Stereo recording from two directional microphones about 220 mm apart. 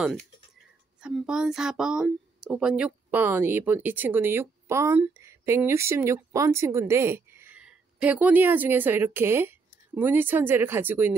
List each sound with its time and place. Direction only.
1.0 s a child's voice: 5° right (ahead or behind)